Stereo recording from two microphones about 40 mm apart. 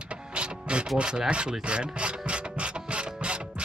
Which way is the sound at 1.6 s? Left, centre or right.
Right.